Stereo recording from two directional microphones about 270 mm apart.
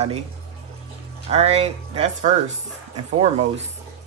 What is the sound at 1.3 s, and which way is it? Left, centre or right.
Speech, right.